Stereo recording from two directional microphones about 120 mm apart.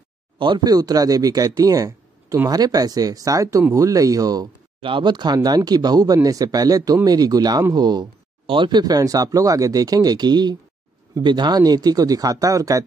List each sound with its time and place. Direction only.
0.4 s speech: 35° right (ahead or behind)
4.8 s speech: 40° right (ahead or behind)